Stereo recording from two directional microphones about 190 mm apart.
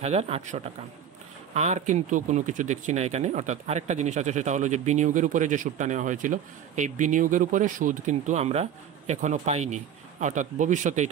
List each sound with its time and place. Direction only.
0.0 s speech: 35° right (ahead or behind)